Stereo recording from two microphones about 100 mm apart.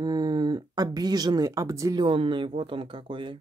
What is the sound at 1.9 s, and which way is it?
Speech, 55° right (ahead or behind).